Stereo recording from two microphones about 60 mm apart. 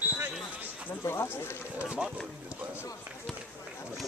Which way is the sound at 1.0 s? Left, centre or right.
Left.